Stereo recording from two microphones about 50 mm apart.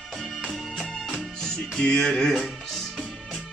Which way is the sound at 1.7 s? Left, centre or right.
Centre.